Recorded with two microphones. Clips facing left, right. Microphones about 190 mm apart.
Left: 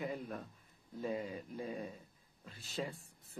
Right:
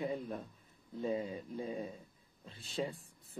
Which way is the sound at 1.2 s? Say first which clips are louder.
Right 2 dB; centre (ahead or behind).